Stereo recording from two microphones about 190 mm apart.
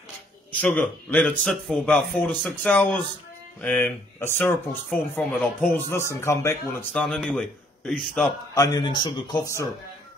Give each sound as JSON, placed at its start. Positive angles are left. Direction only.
{"t": 0.5, "sound": "speech", "side_deg": 10}
{"t": 8.5, "sound": "speech", "side_deg": 20}